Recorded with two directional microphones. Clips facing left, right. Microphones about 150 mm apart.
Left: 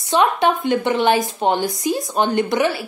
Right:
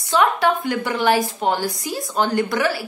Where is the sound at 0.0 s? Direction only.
20° left (ahead or behind).